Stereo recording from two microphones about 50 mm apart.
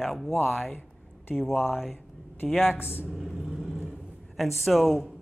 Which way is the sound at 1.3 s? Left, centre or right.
Centre.